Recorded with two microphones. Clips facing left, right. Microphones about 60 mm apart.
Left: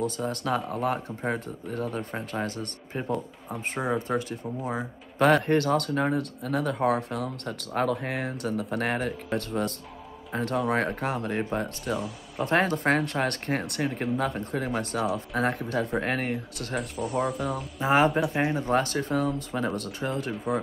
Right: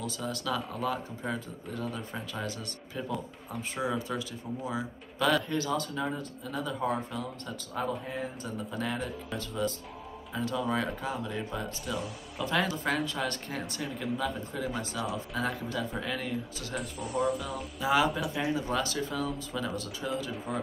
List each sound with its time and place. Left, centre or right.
0.0 s speech: left
16.9 s speech: centre
17.7 s speech: left